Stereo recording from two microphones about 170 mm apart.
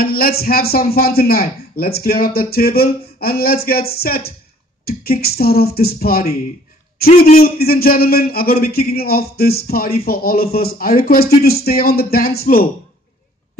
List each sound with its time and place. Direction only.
0.0 s a man's voice: 65° left (ahead or behind)
7.3 s a man's voice: 60° left (ahead or behind)